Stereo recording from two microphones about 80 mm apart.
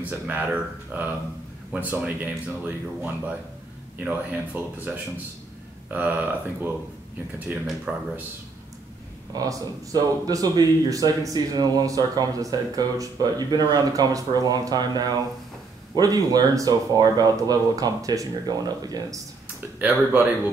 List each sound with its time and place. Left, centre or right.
0.1 s speech: right
4.0 s speech: centre
7.4 s speech: centre
9.3 s speech: right
19.8 s speech: right